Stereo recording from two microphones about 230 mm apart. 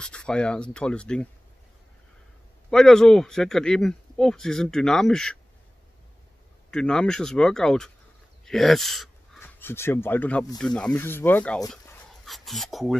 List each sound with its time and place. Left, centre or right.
0.0 s speech: centre
2.7 s speech: centre
6.7 s speech: centre